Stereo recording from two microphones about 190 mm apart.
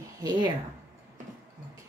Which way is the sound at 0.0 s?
20° right (ahead or behind).